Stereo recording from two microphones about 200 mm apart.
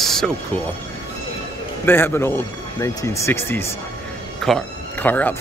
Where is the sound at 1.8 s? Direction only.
10° left (ahead or behind).